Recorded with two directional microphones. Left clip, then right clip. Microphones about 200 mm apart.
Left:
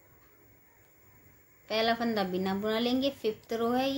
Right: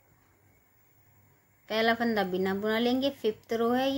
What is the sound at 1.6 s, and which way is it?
A woman's voice, 30° right (ahead or behind).